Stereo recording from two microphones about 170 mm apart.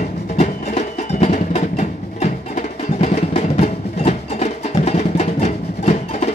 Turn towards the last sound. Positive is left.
turn(degrees=40)  # may be behind; listen again after turning